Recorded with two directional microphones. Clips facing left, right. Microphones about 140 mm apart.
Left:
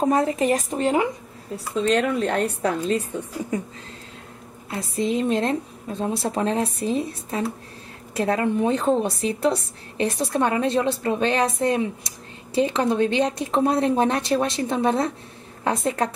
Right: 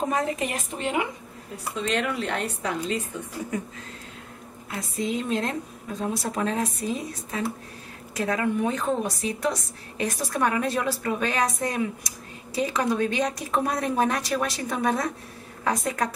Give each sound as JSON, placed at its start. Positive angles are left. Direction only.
{"t": 0.1, "sound": "a woman's voice", "side_deg": 35}
{"t": 4.6, "sound": "a woman's voice", "side_deg": 30}